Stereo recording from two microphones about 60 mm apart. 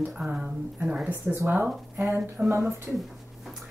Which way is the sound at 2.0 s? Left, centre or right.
Right.